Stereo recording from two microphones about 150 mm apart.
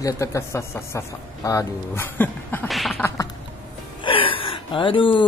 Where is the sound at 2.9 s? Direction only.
15° left (ahead or behind).